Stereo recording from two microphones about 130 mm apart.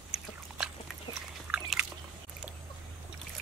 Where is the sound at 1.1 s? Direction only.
30° left (ahead or behind).